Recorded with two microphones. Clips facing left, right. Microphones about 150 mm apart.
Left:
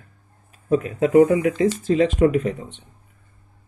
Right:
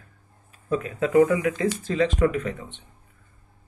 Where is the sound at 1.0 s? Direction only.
35° left (ahead or behind).